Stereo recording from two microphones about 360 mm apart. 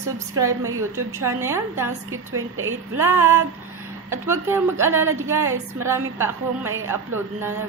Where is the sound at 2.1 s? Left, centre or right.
Right.